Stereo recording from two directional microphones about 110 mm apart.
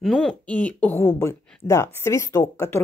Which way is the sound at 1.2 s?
25° left (ahead or behind).